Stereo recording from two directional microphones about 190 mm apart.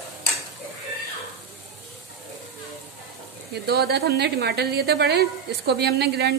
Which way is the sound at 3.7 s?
55° right (ahead or behind).